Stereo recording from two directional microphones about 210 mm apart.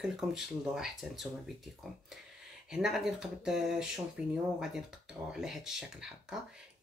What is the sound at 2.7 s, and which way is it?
Speech, centre (ahead or behind).